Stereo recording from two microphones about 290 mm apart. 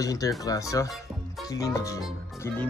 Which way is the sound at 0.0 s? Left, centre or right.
Centre.